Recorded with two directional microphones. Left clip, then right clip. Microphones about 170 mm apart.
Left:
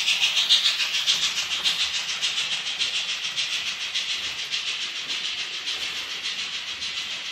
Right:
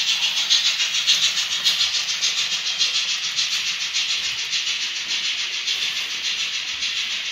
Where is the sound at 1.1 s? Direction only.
20° left (ahead or behind).